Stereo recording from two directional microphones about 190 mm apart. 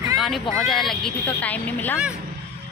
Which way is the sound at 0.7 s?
Centre (ahead or behind).